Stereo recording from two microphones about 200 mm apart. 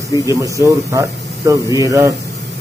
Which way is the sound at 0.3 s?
15° right (ahead or behind).